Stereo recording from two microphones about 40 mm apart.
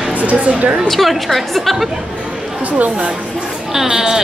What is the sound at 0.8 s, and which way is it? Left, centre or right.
Speech, centre.